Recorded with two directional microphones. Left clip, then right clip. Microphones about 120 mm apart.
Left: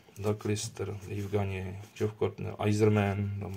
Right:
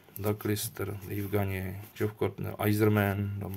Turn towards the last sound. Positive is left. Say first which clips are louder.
# right 1 dB
turn(degrees=-25)  # may be behind; listen again after turning